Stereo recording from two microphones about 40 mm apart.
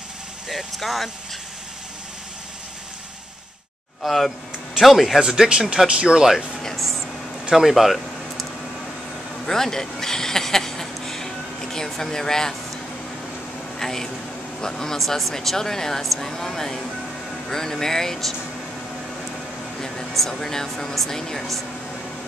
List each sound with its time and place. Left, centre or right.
0.5 s speech: centre
4.0 s speech: centre
5.2 s speech: centre
6.8 s a sound: centre
9.5 s a sound: centre
13.7 s speech: centre
20.2 s speech: centre